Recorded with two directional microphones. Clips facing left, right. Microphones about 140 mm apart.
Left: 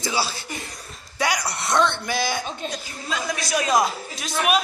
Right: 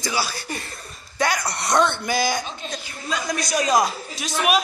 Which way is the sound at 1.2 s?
10° left (ahead or behind).